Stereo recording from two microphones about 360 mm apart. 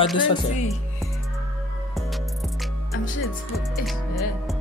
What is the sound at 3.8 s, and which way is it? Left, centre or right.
Music, centre.